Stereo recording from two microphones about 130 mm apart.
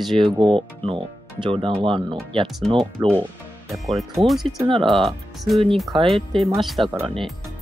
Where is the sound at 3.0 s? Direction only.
30° right (ahead or behind).